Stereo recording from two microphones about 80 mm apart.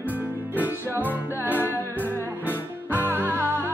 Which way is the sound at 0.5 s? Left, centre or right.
Right.